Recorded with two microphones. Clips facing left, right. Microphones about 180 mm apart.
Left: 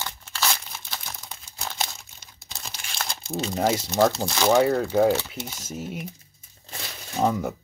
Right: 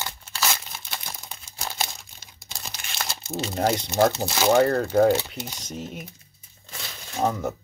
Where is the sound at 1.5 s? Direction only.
10° right (ahead or behind).